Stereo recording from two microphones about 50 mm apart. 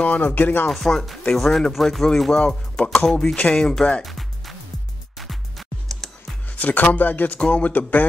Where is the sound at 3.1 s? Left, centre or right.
Centre.